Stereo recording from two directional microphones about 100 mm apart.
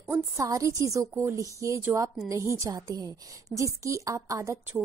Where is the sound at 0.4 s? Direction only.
35° right (ahead or behind).